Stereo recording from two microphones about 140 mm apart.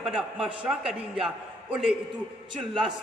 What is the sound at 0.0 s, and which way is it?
A man's voice, centre (ahead or behind).